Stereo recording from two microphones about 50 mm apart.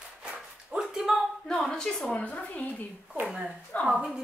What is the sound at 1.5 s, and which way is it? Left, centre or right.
A woman's voice, centre.